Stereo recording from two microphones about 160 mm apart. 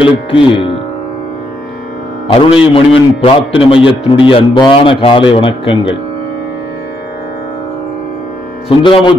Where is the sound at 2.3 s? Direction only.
35° left (ahead or behind).